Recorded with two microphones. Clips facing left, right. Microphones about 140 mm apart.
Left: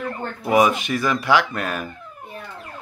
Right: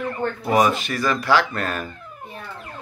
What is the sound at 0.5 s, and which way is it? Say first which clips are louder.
Speech: left 2 dB; 10° left (ahead or behind).